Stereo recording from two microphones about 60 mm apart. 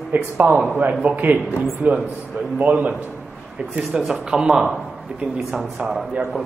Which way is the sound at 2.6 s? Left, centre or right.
Right.